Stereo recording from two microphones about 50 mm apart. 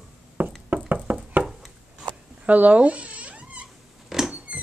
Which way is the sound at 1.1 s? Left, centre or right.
Right.